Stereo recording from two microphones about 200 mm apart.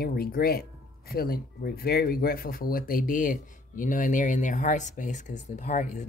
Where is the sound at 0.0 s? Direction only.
50° left (ahead or behind).